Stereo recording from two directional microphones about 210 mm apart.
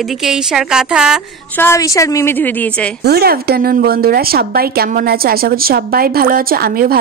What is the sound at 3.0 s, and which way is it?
Speech, 50° right (ahead or behind).